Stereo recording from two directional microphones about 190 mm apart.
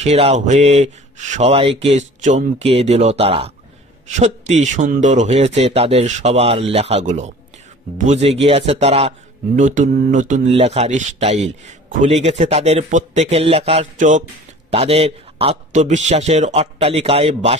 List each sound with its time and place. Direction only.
0.0 s speech: 35° right (ahead or behind)